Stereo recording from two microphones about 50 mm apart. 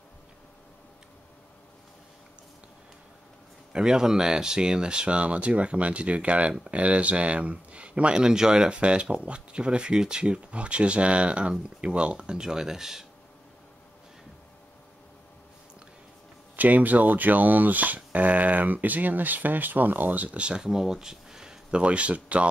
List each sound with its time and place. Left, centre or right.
3.7 s speech: centre
16.5 s speech: right